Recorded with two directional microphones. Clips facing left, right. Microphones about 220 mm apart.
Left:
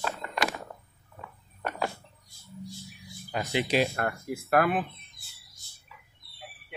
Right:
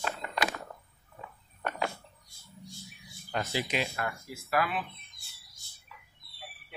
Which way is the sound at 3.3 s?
5° left (ahead or behind).